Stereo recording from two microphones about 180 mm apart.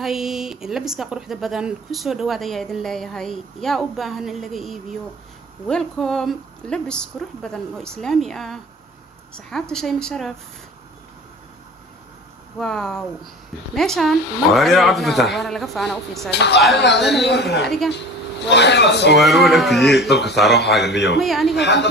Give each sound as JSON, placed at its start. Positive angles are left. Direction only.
{"t": 0.0, "sound": "speech", "side_deg": 0}
{"t": 12.5, "sound": "speech", "side_deg": 5}
{"t": 16.3, "sound": "a man's voice", "side_deg": 70}
{"t": 17.0, "sound": "speech", "side_deg": 0}
{"t": 17.3, "sound": "a man's voice", "side_deg": 70}
{"t": 17.6, "sound": "speech", "side_deg": 0}
{"t": 18.5, "sound": "a man's voice", "side_deg": 70}
{"t": 19.1, "sound": "speech", "side_deg": 0}
{"t": 20.8, "sound": "a man's voice", "side_deg": 70}
{"t": 21.2, "sound": "speech", "side_deg": 0}
{"t": 21.5, "sound": "a man's voice", "side_deg": 70}